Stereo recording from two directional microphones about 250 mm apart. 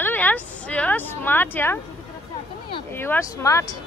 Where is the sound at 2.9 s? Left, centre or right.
Centre.